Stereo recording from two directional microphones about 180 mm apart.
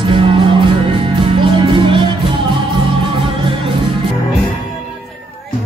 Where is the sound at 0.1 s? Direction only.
25° right (ahead or behind).